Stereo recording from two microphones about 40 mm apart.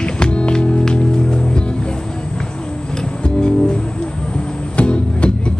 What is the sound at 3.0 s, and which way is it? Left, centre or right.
Music, left.